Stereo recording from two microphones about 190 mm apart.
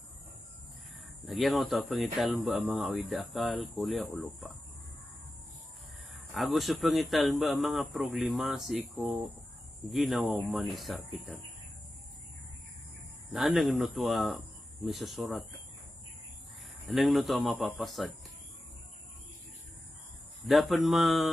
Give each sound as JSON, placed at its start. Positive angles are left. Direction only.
{"t": 1.2, "sound": "speech", "side_deg": 0}
{"t": 6.3, "sound": "speech", "side_deg": 0}
{"t": 13.3, "sound": "speech", "side_deg": 0}
{"t": 16.8, "sound": "speech", "side_deg": 0}
{"t": 20.4, "sound": "speech", "side_deg": 0}